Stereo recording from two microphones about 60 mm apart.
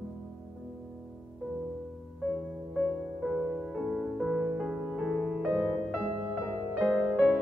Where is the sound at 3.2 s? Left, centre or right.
Centre.